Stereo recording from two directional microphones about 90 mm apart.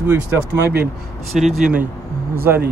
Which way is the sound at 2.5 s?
25° right (ahead or behind).